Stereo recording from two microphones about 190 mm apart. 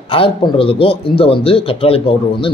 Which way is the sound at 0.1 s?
30° left (ahead or behind).